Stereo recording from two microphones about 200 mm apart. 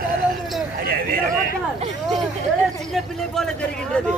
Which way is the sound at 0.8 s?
50° right (ahead or behind).